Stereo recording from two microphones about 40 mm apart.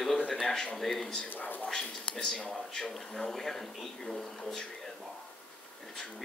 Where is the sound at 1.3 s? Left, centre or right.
Left.